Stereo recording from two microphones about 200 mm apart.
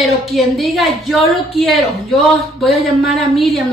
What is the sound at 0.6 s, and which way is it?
A woman's voice, centre (ahead or behind).